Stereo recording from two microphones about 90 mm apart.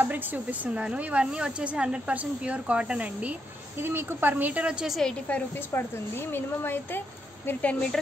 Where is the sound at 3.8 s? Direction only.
25° right (ahead or behind); by 5.0 s 10° right (ahead or behind).